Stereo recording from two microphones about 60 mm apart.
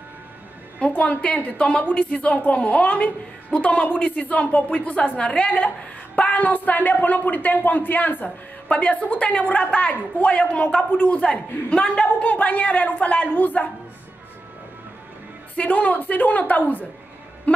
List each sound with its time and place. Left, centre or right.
0.7 s a woman's voice: left
8.6 s a woman's voice: left
15.5 s a woman's voice: left